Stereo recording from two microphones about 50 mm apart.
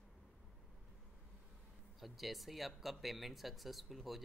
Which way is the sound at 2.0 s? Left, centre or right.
Centre.